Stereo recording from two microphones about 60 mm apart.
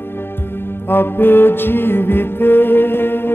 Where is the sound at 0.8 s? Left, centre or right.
Left.